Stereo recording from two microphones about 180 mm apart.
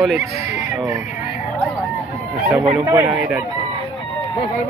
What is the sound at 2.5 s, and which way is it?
Speech, 10° right (ahead or behind).